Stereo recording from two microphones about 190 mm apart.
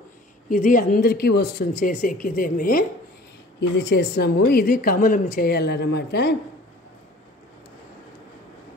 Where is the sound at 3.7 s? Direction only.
60° left (ahead or behind).